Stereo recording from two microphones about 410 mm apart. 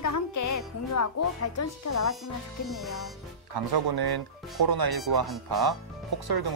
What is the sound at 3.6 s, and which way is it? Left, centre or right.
Speech, right.